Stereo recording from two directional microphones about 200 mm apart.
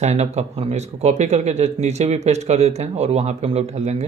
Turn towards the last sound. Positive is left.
turn(degrees=-35)  # may be behind; listen again after turning